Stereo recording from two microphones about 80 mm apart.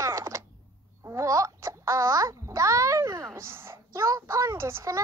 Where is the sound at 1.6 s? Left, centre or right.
Right.